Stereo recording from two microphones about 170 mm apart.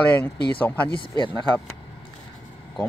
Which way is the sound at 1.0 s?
25° left (ahead or behind).